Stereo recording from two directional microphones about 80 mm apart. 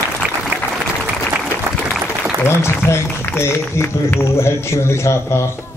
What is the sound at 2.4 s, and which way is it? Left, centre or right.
Speech, left.